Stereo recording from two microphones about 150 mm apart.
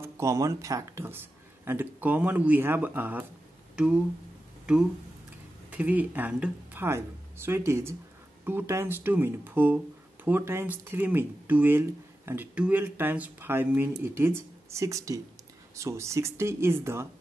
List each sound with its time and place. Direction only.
0.0 s speech: 20° right (ahead or behind)
3.7 s a sound: 5° right (ahead or behind)
5.7 s speech: 10° right (ahead or behind)